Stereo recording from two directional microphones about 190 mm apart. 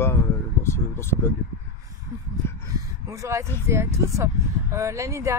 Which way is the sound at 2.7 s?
15° right (ahead or behind).